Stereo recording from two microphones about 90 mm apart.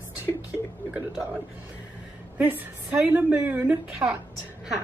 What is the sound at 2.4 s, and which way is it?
A woman's voice, 20° right (ahead or behind).